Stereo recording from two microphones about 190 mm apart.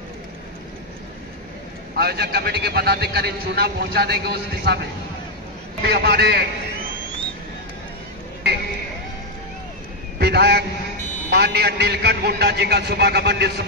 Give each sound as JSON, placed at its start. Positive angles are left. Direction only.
{"t": 2.0, "sound": "a man's voice", "side_deg": -55}
{"t": 5.8, "sound": "a man's voice", "side_deg": -60}
{"t": 10.1, "sound": "a man's voice", "side_deg": -55}